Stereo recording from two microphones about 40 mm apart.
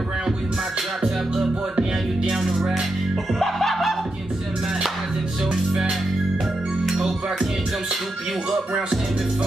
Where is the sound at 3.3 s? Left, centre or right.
Centre.